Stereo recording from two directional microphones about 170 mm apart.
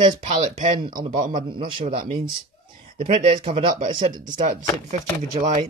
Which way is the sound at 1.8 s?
55° right (ahead or behind).